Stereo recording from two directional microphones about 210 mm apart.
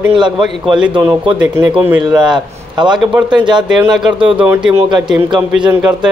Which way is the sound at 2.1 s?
20° right (ahead or behind).